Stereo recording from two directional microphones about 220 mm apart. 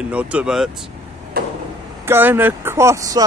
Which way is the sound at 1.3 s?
45° right (ahead or behind).